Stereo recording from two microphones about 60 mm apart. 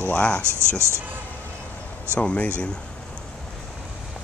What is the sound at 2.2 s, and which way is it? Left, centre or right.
Speech, left.